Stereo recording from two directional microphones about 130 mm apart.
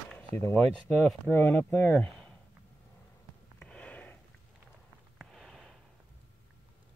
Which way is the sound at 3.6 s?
10° left (ahead or behind).